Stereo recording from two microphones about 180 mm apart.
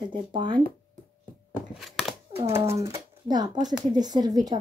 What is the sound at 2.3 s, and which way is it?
Speech, 35° right (ahead or behind).